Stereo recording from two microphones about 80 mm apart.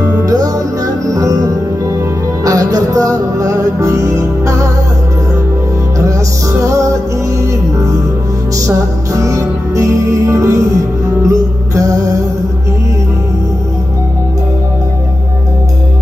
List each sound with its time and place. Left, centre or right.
0.0 s music: right
6.6 s music: right
8.5 s music: right